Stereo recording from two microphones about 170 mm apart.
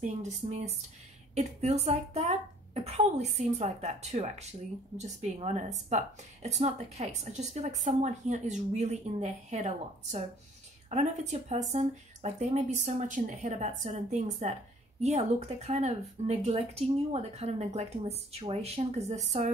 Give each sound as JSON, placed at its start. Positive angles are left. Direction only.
{"t": 0.0, "sound": "speech", "side_deg": -40}